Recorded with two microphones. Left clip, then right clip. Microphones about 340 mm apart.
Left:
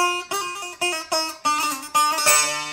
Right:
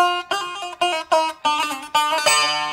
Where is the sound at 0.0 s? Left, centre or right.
Right.